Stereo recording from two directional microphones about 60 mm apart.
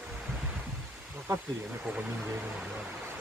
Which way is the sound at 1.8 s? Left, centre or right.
Centre.